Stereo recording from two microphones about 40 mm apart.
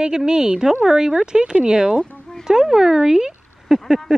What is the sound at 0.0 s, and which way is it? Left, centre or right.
Speech, centre.